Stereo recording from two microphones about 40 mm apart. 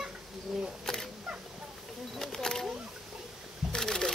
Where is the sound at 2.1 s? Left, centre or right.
Centre.